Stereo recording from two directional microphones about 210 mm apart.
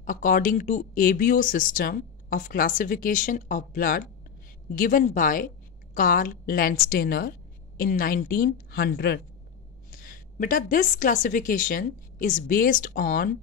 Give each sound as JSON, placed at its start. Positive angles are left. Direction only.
{"t": 0.0, "sound": "a woman's voice", "side_deg": 40}